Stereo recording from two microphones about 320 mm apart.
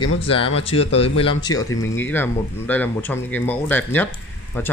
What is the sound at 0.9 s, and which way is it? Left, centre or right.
Speech, left.